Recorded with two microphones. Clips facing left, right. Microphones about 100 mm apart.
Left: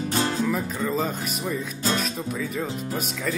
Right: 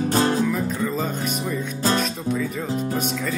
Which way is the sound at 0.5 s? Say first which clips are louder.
Right 2 dB; centre (ahead or behind).